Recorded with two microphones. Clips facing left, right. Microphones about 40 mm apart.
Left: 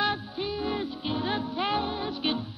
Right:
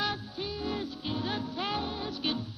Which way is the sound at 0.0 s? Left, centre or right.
Centre.